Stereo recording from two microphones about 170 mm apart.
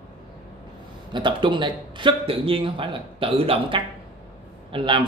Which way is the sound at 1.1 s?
30° right (ahead or behind).